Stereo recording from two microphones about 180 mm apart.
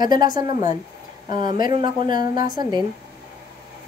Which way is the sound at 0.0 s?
25° right (ahead or behind).